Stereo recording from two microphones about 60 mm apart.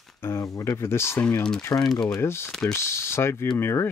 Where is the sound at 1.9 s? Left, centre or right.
Centre.